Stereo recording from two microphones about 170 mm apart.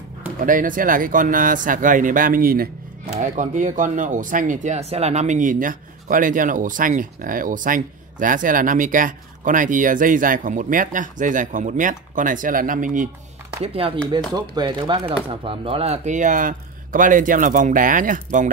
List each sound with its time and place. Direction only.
0.4 s speech: 50° right (ahead or behind)
3.2 s speech: 45° right (ahead or behind)
13.6 s speech: 35° right (ahead or behind); by 18.5 s 50° right (ahead or behind)